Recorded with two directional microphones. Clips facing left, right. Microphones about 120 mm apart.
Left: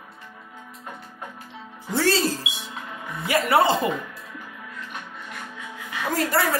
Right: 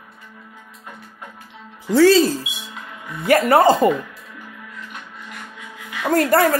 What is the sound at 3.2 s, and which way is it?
Speech, 50° right (ahead or behind).